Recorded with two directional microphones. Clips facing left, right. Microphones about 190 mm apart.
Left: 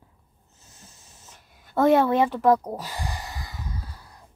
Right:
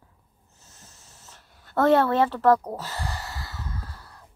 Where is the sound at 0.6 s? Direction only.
15° left (ahead or behind).